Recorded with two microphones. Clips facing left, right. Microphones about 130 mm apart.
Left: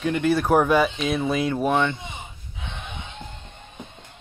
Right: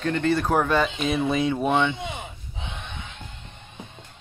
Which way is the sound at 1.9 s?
70° right (ahead or behind).